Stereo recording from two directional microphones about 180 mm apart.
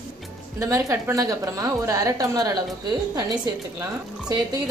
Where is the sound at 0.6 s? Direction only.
15° right (ahead or behind).